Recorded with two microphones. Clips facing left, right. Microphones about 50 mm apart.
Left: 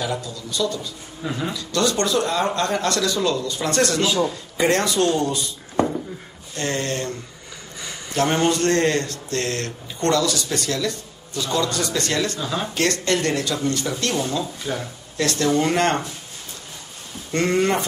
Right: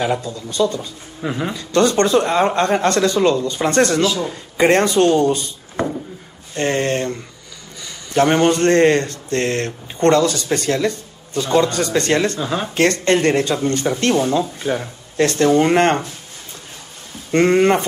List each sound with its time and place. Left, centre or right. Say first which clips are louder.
0.0 s speech: right 6 dB; right
1.2 s a man's voice: right 4 dB; right
1.5 s speech: right 7 dB; right
6.5 s a man's voice: right 6 dB; right
17.3 s speech: right 6 dB; right